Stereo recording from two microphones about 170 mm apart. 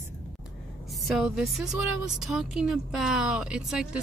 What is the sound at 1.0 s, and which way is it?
Speech, centre (ahead or behind).